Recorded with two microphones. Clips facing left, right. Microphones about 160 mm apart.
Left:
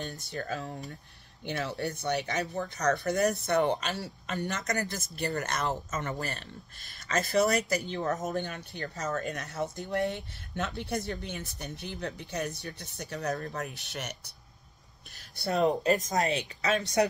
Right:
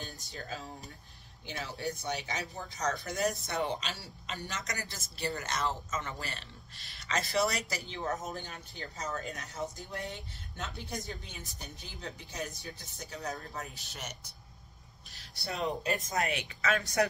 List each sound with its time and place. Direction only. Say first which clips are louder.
0.1 s speech: left 7 dB; 65° left (ahead or behind)
8.2 s speech: left 8 dB; 70° left (ahead or behind)
9.3 s speech: left 5 dB; 75° left (ahead or behind)
15.1 s speech: left 9 dB; 45° left (ahead or behind)
16.3 s speech: left 3 dB; 25° left (ahead or behind)